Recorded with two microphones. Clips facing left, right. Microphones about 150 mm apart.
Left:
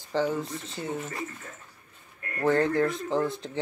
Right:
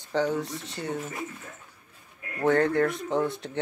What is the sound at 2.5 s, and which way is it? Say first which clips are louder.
Speech: right 1 dB; centre (ahead or behind).